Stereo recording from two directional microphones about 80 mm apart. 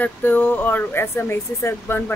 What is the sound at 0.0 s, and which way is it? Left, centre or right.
Speech, left.